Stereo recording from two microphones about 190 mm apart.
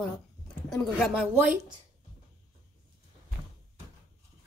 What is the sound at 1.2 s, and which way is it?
Speech, 10° right (ahead or behind).